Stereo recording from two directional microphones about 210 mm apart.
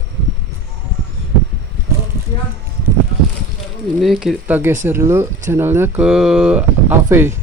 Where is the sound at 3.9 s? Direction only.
Centre (ahead or behind).